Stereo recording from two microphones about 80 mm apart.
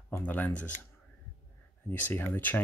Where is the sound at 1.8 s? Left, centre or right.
Left.